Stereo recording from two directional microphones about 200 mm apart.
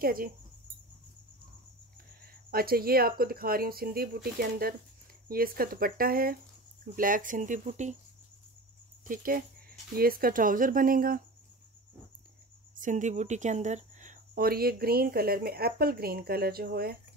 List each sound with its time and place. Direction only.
0.0 s speech: 45° right (ahead or behind)
2.5 s speech: 50° right (ahead or behind)
9.0 s speech: 45° right (ahead or behind)
12.7 s speech: 40° right (ahead or behind)